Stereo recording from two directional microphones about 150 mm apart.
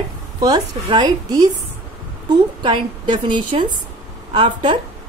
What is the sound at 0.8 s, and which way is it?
A woman's voice, 25° right (ahead or behind).